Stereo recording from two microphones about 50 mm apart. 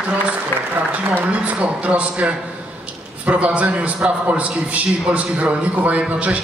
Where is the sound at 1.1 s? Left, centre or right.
Right.